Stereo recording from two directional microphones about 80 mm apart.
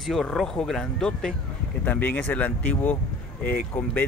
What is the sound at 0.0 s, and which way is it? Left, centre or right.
Speech, centre.